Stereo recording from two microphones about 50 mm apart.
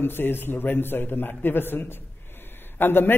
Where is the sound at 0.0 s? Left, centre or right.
Left.